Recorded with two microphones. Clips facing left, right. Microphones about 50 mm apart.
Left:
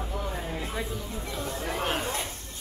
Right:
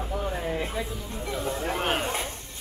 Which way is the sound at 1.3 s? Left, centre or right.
Centre.